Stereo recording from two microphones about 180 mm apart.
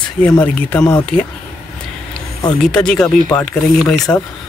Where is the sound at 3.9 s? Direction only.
20° left (ahead or behind).